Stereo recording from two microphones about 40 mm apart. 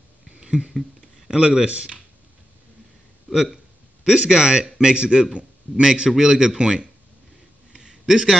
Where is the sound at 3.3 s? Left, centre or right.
Centre.